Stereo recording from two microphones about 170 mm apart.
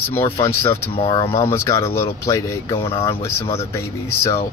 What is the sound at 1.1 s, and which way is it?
Speech, 30° left (ahead or behind).